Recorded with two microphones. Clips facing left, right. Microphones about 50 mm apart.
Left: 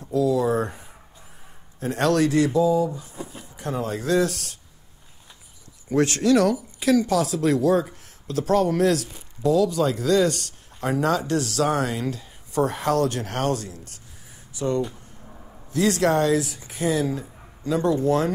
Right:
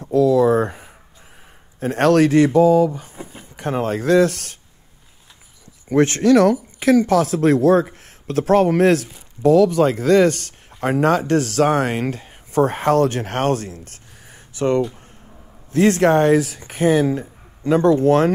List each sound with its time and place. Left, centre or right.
0.1 s speech: right
3.1 s speech: right
3.5 s speech: right
5.9 s speech: right